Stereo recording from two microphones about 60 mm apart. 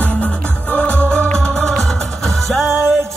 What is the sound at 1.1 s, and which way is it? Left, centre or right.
Music, centre.